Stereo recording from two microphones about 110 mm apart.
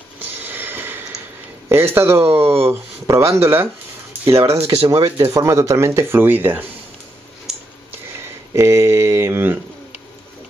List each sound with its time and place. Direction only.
0.2 s snort: 20° right (ahead or behind)
1.7 s speech: 20° right (ahead or behind)
4.6 s speech: 70° right (ahead or behind)
4.8 s speech: 30° right (ahead or behind)
8.5 s speech: 25° right (ahead or behind)